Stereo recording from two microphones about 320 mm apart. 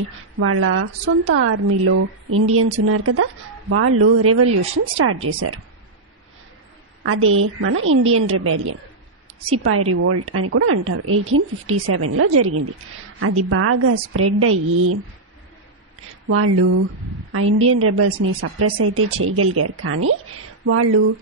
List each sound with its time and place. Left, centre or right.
0.4 s a woman's voice: right
7.0 s a woman's voice: right
16.3 s a woman's voice: right